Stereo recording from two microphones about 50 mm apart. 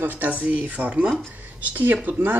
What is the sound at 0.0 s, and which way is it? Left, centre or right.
Speech, right.